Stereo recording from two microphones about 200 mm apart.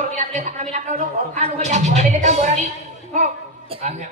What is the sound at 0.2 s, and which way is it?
A man's voice, 35° right (ahead or behind).